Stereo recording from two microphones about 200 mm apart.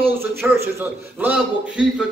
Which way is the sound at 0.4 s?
10° right (ahead or behind).